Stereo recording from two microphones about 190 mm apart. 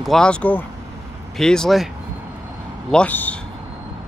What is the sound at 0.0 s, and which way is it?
Speech, 5° left (ahead or behind).